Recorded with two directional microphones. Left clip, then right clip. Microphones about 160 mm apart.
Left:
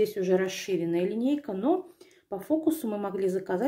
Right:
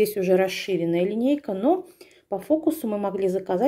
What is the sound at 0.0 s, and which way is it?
A woman's voice, 40° right (ahead or behind).